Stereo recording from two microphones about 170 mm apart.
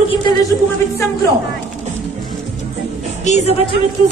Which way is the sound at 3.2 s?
40° left (ahead or behind).